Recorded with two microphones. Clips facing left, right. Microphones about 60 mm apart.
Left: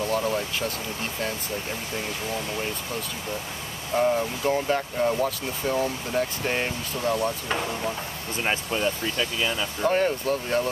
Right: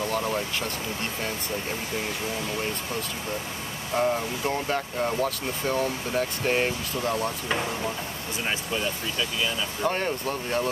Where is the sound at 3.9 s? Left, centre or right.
Centre.